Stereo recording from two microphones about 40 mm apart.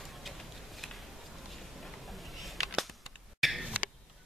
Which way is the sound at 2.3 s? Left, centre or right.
Centre.